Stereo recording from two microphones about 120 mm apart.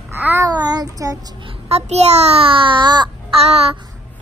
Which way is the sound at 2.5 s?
45° right (ahead or behind).